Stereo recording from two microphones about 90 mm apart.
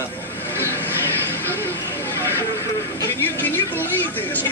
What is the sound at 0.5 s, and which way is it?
Vehicle, 25° left (ahead or behind).